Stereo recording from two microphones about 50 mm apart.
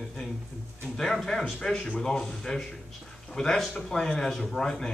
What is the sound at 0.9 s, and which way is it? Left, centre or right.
A man's voice, centre.